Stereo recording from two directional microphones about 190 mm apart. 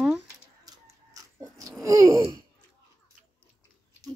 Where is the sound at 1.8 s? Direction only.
15° right (ahead or behind).